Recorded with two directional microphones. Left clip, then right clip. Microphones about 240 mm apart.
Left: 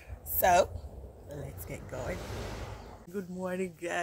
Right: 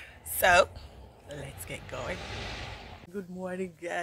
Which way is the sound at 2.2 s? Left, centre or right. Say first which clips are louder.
Right 3 dB; left.